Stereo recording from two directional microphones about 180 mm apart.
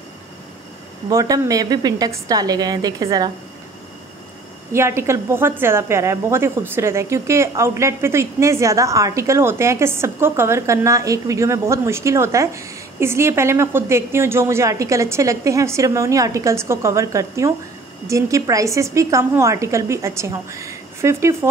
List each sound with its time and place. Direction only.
1.0 s a woman's voice: 20° right (ahead or behind)
4.7 s a woman's voice: 15° right (ahead or behind)